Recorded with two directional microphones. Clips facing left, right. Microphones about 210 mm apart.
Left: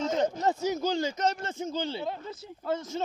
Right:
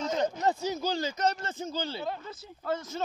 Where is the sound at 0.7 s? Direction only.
20° left (ahead or behind).